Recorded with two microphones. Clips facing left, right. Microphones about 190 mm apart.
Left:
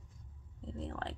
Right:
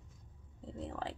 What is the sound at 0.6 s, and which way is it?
Speech, 5° right (ahead or behind).